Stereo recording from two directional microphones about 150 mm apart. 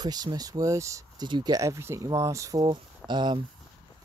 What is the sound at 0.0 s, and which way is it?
Speech, 25° right (ahead or behind).